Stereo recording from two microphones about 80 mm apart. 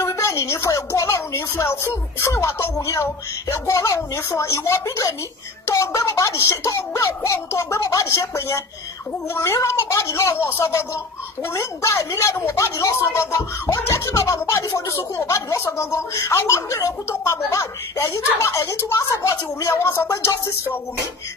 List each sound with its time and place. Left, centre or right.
0.0 s speech: left
15.0 s speech: left